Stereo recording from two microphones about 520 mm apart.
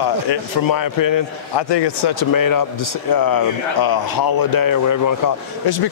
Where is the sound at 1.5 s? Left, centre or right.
Left.